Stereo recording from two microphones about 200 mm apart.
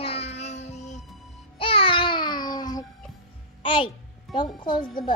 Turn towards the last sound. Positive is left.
turn(degrees=25)  # may be behind; listen again after turning